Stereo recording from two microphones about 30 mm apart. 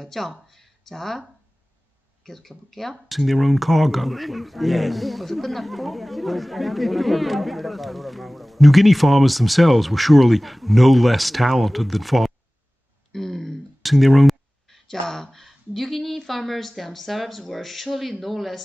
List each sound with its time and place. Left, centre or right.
0.0 s speech: centre
2.2 s speech: centre
13.1 s a sound: centre
14.9 s speech: centre
15.3 s speech: centre